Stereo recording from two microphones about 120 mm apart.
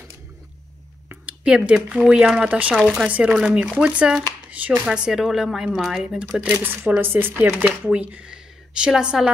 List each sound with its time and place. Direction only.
1.0 s speech: 10° right (ahead or behind)